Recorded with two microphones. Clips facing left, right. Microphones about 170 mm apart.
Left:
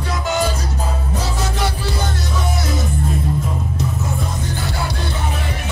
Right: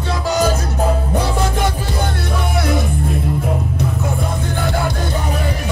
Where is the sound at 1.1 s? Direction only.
55° right (ahead or behind).